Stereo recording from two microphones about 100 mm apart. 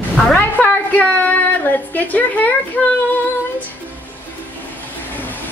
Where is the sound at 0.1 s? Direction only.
10° left (ahead or behind).